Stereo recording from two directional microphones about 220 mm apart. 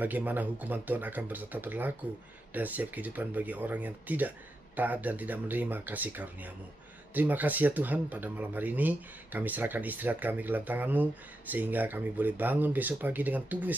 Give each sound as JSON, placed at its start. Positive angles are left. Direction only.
{"t": 0.0, "sound": "speech", "side_deg": -10}